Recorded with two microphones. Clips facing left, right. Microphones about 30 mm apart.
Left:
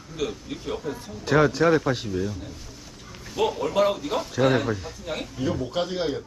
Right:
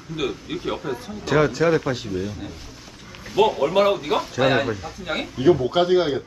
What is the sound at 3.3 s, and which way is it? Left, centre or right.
Speech, right.